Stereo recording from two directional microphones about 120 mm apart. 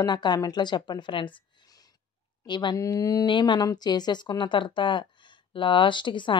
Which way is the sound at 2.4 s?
40° left (ahead or behind).